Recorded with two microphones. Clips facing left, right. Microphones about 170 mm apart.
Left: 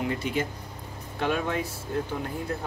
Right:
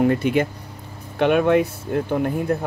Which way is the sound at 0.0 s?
60° right (ahead or behind).